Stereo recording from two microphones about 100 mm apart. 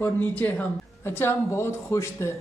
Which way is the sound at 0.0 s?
20° left (ahead or behind).